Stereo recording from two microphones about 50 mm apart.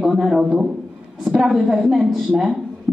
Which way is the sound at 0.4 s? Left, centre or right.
Centre.